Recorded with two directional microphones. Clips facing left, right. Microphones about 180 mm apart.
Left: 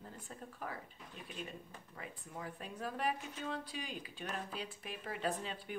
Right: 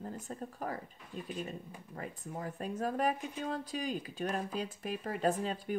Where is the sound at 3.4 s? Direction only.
40° right (ahead or behind).